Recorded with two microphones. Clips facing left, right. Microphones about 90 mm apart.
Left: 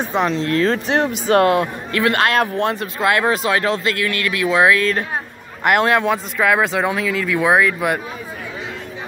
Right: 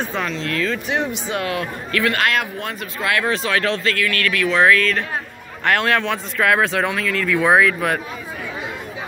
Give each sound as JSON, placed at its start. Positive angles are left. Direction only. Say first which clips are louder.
{"t": 0.0, "sound": "a man's voice", "louder": "left 5 dB", "side_deg": 20}
{"t": 0.3, "sound": "a man's voice", "louder": "left 5 dB", "side_deg": 35}
{"t": 6.3, "sound": "speech", "louder": "right 1 dB", "side_deg": 5}